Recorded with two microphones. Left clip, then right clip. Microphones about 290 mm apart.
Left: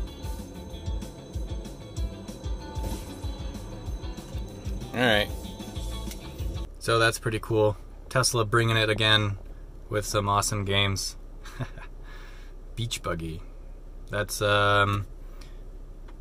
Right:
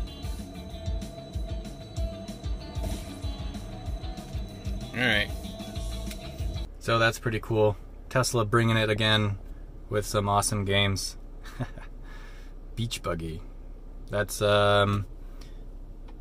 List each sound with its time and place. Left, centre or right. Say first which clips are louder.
4.9 s speech: left 2 dB; centre
6.9 s speech: left 1 dB; centre